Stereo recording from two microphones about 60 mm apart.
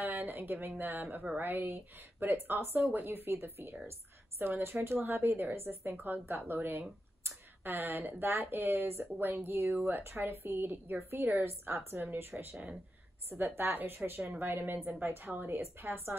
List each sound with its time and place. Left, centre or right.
0.0 s speech: right